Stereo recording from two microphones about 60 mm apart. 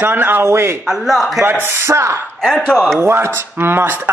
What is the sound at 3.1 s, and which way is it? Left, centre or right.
Speech, right.